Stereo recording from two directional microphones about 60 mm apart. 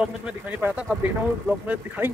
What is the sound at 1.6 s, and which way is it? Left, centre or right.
Speech, right.